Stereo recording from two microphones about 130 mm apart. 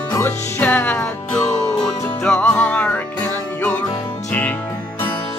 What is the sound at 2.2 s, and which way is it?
Music, 5° left (ahead or behind).